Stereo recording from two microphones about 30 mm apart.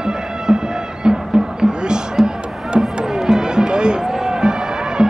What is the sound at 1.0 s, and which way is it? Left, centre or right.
Music, right.